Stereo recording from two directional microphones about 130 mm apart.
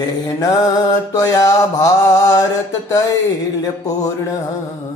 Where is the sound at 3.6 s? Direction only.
25° left (ahead or behind).